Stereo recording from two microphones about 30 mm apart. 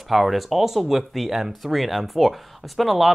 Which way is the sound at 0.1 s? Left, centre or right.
Centre.